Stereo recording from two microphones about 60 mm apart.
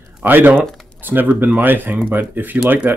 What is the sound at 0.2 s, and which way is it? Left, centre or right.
Speech, right.